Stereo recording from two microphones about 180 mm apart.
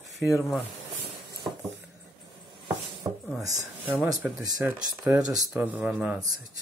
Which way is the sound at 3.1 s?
20° right (ahead or behind).